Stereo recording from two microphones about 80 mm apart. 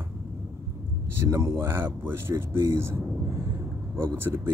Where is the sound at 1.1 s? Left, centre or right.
Right.